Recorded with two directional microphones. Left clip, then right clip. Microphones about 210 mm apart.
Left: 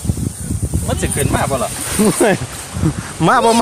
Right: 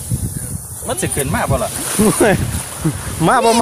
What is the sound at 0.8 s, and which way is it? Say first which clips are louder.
Speech: even; centre (ahead or behind).